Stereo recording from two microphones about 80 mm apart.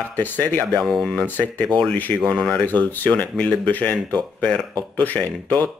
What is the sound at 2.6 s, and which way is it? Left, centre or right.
A man's voice, left.